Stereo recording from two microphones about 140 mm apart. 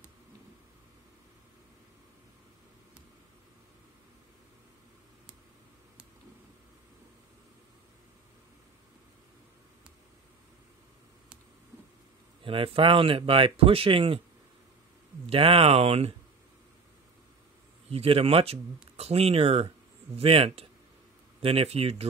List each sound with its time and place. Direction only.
12.4 s speech: 40° right (ahead or behind)
15.2 s speech: 40° right (ahead or behind)
17.8 s speech: 45° right (ahead or behind)